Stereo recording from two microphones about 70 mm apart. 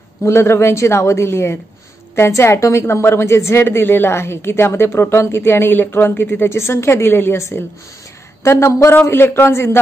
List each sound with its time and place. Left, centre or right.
0.2 s a woman's voice: left